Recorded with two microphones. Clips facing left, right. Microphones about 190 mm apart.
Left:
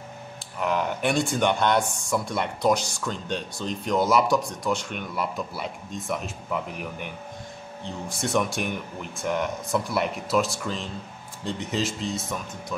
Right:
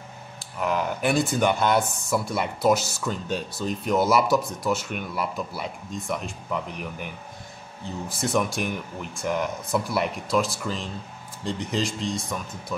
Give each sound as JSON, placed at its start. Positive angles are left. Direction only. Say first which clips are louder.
{"t": 0.6, "sound": "speech", "louder": "even", "side_deg": 0}